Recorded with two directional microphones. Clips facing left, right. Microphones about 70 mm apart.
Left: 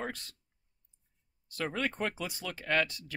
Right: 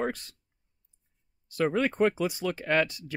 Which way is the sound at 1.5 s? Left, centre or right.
Centre.